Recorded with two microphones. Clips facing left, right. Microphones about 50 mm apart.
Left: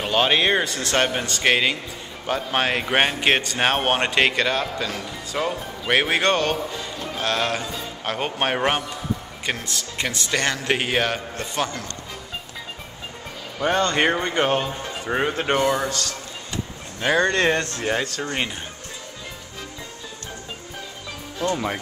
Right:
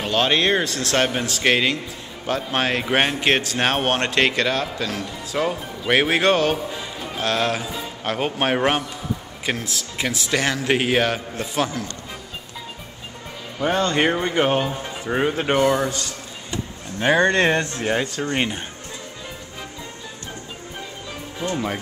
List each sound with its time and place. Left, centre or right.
0.0 s speech: centre
13.6 s speech: centre
15.9 s a sound: centre
17.0 s speech: centre
21.4 s speech: centre